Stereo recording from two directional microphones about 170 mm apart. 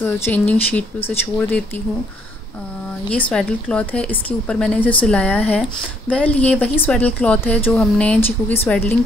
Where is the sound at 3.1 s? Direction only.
10° left (ahead or behind).